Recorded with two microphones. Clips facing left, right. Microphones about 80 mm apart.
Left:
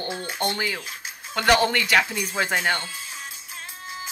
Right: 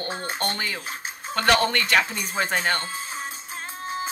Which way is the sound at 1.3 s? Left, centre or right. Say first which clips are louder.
Left 1 dB; centre.